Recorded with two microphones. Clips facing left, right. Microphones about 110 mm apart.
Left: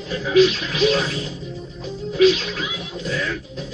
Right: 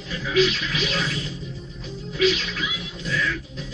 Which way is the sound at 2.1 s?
40° left (ahead or behind).